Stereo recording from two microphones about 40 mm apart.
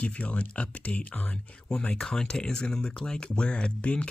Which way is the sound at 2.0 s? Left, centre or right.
Centre.